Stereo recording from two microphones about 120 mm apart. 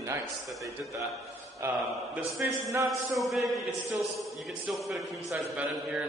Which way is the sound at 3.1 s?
Centre (ahead or behind).